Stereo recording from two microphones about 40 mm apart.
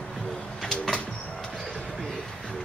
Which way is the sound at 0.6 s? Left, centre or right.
Centre.